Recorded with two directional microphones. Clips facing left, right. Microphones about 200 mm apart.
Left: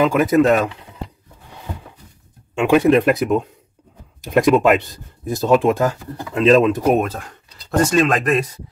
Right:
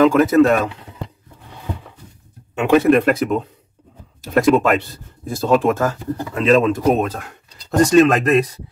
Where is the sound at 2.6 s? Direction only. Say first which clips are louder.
Even; 10° left (ahead or behind).